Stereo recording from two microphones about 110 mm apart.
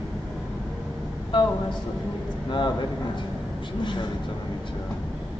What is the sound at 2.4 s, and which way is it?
Speech, 45° left (ahead or behind).